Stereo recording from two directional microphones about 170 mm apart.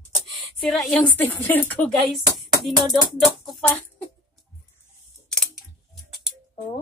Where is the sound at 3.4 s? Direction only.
5° left (ahead or behind).